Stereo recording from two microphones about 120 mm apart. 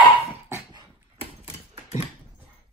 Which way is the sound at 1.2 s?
50° left (ahead or behind).